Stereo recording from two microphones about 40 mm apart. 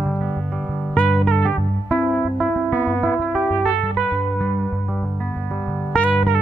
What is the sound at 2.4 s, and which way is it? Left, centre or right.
Music, left.